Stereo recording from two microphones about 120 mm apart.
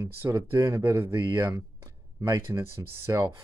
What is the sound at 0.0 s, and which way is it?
Speech, 25° right (ahead or behind).